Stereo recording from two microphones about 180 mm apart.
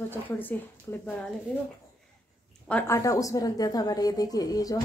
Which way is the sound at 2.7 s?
15° left (ahead or behind).